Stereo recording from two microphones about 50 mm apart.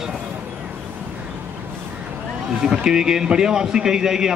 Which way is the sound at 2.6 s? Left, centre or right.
Centre.